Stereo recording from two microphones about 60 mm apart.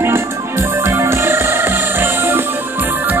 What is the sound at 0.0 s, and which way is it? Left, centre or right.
Music, right.